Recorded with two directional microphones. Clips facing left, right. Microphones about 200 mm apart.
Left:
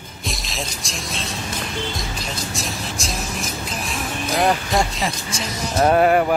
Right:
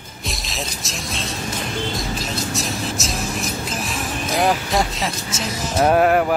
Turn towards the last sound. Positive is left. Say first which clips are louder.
# even
turn(degrees=0)  # may be behind; listen again after turning